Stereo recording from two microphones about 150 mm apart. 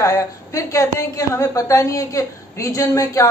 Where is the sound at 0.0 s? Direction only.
20° left (ahead or behind).